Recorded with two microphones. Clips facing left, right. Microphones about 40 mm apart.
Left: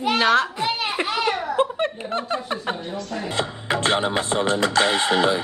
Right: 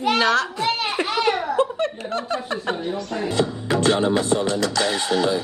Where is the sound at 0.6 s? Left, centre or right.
Centre.